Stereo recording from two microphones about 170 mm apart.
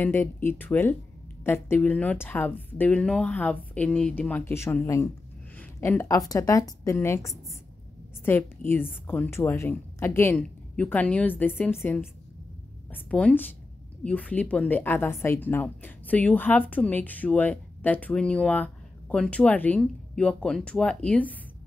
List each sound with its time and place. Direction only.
0.0 s a woman's voice: 10° left (ahead or behind)